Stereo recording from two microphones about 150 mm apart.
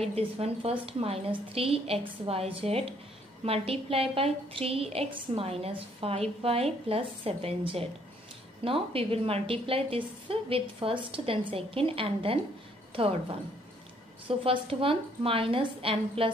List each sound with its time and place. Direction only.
0.0 s a woman's voice: 40° right (ahead or behind)
14.2 s a woman's voice: 35° right (ahead or behind)